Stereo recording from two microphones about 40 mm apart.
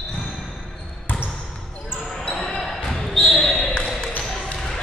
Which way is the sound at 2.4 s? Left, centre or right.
Centre.